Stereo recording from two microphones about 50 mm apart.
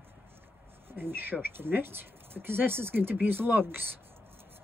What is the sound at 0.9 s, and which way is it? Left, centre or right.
Speech, right.